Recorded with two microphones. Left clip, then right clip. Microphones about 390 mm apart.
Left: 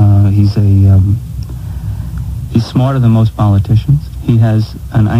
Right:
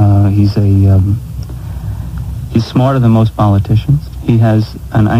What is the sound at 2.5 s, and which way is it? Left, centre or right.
Speech, left.